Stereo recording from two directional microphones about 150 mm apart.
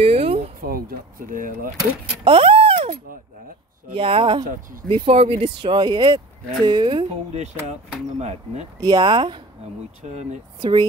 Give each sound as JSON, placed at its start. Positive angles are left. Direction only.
{"t": 0.0, "sound": "a sound", "side_deg": -45}
{"t": 0.6, "sound": "speech", "side_deg": -80}
{"t": 2.2, "sound": "a sound", "side_deg": -40}
{"t": 3.9, "sound": "speech", "side_deg": -35}
{"t": 8.8, "sound": "speech", "side_deg": -30}
{"t": 10.6, "sound": "speech", "side_deg": -30}